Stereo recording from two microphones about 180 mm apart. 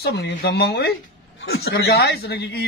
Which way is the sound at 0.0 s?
65° left (ahead or behind).